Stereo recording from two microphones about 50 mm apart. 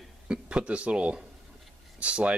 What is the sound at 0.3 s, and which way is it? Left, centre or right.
Speech, right.